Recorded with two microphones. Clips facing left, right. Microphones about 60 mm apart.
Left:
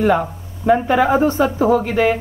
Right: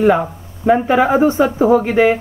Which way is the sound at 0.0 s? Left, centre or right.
Centre.